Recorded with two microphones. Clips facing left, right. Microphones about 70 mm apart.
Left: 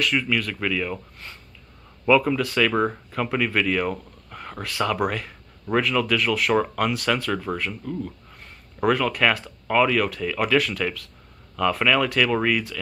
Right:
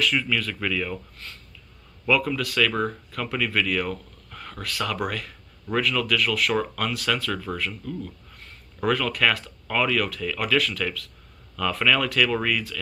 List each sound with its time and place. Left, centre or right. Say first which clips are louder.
0.0 s speech: left 1 dB; centre